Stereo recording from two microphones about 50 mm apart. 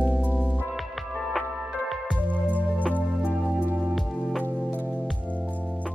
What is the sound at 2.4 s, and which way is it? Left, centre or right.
Music, left.